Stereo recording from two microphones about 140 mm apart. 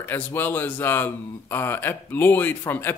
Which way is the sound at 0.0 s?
15° left (ahead or behind).